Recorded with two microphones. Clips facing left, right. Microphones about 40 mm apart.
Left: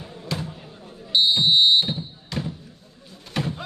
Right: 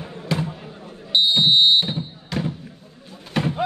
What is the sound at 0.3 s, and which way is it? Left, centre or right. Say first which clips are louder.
Basketball bounce: right 6 dB; centre.